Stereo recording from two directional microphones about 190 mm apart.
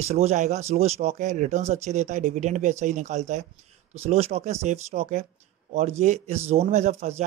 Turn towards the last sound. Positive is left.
turn(degrees=-35)  # may be behind; listen again after turning